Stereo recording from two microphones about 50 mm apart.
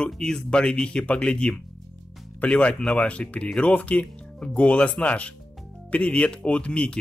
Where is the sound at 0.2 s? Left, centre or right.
Centre.